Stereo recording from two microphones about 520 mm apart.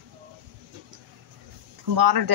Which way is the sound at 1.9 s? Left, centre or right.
Right.